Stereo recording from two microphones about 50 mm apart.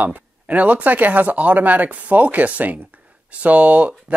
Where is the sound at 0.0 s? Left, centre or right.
Right.